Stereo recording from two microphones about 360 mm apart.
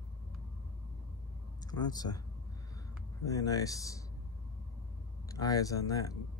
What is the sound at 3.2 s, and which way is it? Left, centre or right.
Speech, centre.